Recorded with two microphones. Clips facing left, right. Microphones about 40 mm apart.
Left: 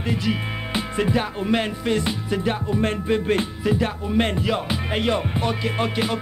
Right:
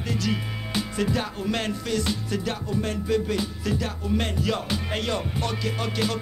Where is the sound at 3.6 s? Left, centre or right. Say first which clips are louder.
Left 6 dB; left.